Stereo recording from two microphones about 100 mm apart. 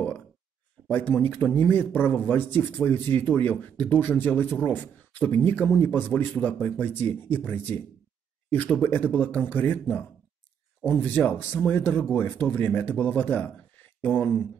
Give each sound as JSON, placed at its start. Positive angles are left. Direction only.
{"t": 0.8, "sound": "speech", "side_deg": 20}